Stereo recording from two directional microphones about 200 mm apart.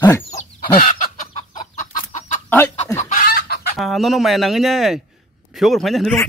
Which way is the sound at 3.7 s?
Centre (ahead or behind).